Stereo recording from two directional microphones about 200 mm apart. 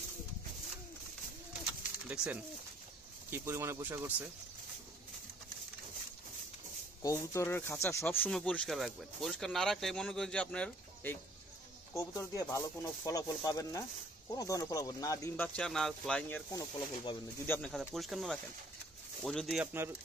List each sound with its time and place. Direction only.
2.2 s speech: 15° left (ahead or behind)
3.3 s speech: 10° right (ahead or behind)
7.0 s speech: 15° left (ahead or behind)
16.5 s speech: 25° left (ahead or behind)
17.5 s speech: 5° left (ahead or behind)